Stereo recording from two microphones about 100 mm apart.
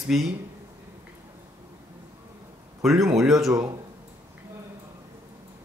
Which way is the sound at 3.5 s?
35° right (ahead or behind).